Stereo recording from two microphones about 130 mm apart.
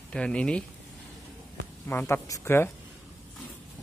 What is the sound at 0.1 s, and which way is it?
Speech, 10° left (ahead or behind).